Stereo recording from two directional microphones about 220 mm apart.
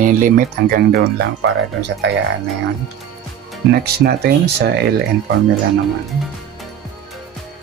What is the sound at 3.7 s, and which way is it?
Speech, 50° right (ahead or behind).